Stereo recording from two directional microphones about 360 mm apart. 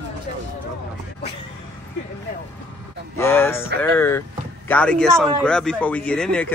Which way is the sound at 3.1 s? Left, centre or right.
Centre.